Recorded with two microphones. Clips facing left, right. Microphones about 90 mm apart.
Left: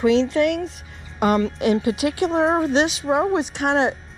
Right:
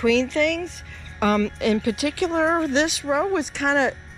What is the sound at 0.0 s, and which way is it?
Speech, 20° left (ahead or behind).